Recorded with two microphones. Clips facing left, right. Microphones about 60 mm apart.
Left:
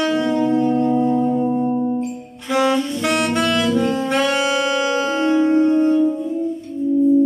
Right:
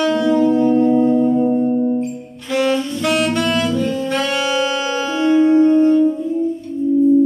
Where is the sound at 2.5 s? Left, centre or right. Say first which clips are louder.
Even; centre.